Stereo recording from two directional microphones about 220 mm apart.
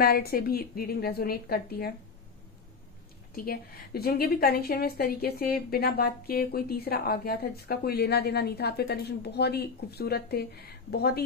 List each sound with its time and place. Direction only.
0.0 s a woman's voice: 45° left (ahead or behind)
3.3 s a woman's voice: 45° left (ahead or behind)